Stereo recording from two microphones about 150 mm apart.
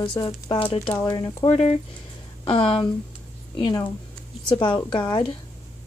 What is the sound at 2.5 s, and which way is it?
A woman's voice, 35° left (ahead or behind).